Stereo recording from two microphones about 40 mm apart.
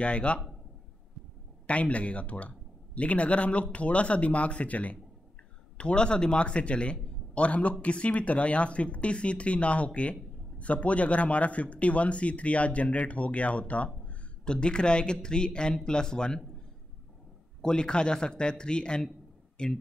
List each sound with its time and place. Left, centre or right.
0.0 s a man's voice: left
1.7 s speech: left
5.8 s a man's voice: left
17.6 s a man's voice: left